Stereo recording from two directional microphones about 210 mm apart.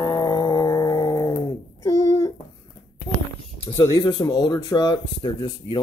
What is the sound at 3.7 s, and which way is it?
Speech, 20° left (ahead or behind).